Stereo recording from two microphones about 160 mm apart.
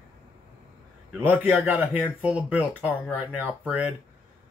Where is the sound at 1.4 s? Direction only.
10° right (ahead or behind).